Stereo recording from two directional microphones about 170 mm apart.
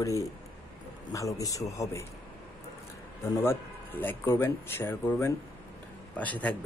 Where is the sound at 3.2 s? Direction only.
15° left (ahead or behind).